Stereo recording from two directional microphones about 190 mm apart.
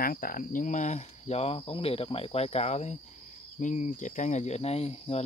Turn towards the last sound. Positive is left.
turn(degrees=35)  # may be behind; listen again after turning